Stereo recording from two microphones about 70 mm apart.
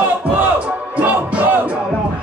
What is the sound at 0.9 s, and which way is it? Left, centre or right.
Music, right.